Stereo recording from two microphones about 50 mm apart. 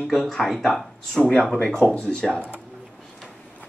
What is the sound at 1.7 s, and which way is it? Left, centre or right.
Speech, centre.